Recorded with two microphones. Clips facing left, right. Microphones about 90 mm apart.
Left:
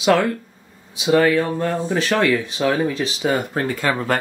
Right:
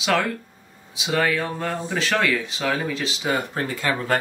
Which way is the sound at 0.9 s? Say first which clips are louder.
Left 7 dB; 35° left (ahead or behind).